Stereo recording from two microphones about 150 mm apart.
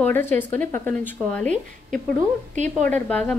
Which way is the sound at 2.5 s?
55° right (ahead or behind).